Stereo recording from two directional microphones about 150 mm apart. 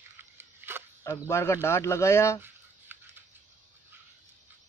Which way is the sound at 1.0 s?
20° left (ahead or behind).